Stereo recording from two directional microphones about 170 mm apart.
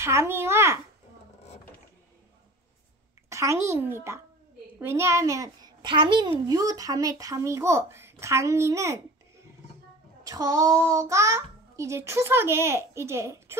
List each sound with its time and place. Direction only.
0.0 s a child's voice: 15° right (ahead or behind)
3.3 s a child's voice: 15° right (ahead or behind)
10.2 s a child's voice: 20° right (ahead or behind)